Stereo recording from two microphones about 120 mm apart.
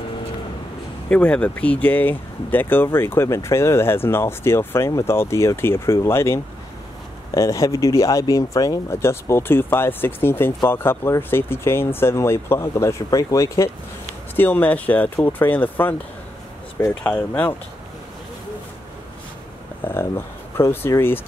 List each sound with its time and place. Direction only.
1.1 s speech: 10° left (ahead or behind); by 13.7 s 30° left (ahead or behind)
14.3 s speech: 15° left (ahead or behind)
17.0 s speech: 15° left (ahead or behind)
19.8 s speech: 20° left (ahead or behind)